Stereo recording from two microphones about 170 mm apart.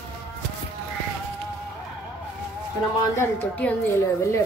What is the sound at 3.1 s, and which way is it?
A woman's voice, 10° left (ahead or behind).